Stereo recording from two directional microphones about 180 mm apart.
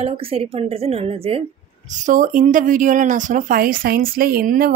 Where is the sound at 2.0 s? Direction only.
45° right (ahead or behind).